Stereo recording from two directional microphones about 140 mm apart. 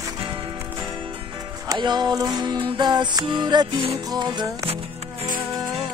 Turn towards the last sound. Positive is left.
turn(degrees=-45)  # may be behind; listen again after turning